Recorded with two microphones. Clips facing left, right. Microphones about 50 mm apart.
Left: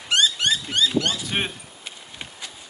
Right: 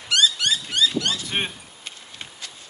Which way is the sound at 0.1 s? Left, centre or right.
Left.